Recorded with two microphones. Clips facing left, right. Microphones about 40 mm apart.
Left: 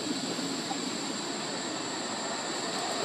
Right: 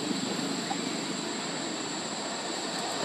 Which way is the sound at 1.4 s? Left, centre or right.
Centre.